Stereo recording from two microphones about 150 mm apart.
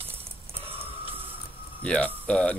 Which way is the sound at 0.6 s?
40° right (ahead or behind).